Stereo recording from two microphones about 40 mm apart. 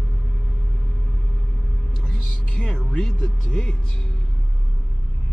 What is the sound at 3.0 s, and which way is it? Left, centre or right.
Speech, left.